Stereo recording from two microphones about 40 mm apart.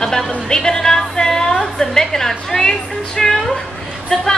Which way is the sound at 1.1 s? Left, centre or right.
Centre.